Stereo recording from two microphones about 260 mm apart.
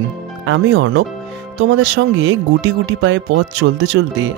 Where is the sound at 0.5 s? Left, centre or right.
Right.